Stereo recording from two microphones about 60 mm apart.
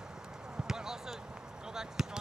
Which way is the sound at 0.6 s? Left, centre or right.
Centre.